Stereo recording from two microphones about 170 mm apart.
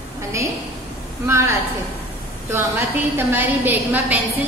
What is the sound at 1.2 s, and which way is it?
Speech, 15° right (ahead or behind).